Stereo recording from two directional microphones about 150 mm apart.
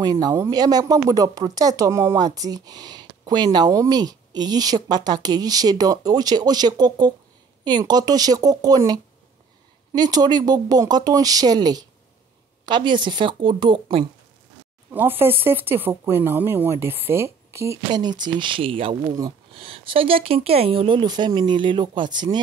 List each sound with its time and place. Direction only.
0.0 s speech: 25° right (ahead or behind)
14.9 s speech: 15° right (ahead or behind); by 22.4 s 30° right (ahead or behind)